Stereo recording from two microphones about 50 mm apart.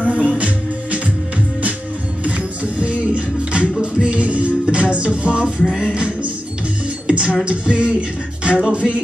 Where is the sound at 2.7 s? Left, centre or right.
Right.